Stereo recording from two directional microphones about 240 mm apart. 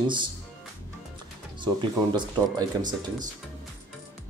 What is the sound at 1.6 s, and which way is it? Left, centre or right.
Speech, centre.